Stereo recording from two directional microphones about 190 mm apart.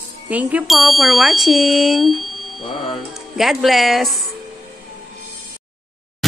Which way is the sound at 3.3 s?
Centre (ahead or behind).